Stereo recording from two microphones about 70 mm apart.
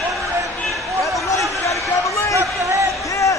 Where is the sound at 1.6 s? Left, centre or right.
Left.